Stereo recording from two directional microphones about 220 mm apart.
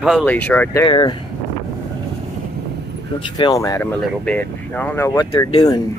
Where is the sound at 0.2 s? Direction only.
10° left (ahead or behind).